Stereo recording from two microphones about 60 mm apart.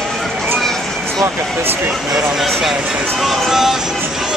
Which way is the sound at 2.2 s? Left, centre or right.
Centre.